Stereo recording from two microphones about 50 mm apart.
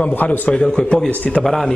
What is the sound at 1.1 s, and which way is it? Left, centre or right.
Speech, left.